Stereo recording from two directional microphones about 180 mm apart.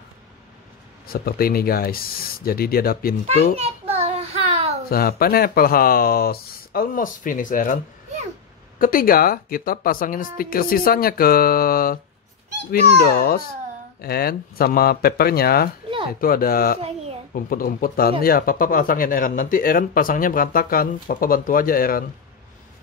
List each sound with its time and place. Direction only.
1.0 s speech: 55° left (ahead or behind)
3.5 s a sound: 35° right (ahead or behind)
4.8 s speech: 55° left (ahead or behind)
13.0 s speech: 60° left (ahead or behind)